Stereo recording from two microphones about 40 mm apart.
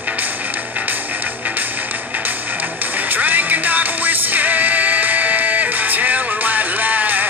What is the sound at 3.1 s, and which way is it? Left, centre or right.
Music, right.